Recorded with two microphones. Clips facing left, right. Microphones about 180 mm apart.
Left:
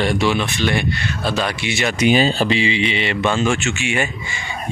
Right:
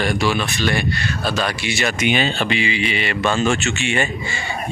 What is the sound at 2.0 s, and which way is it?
Speech, 35° left (ahead or behind).